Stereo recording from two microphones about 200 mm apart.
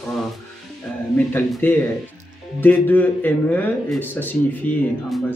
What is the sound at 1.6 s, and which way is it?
A man's voice, 10° left (ahead or behind).